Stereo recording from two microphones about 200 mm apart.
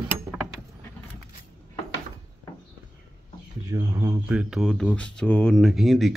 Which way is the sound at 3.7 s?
15° right (ahead or behind).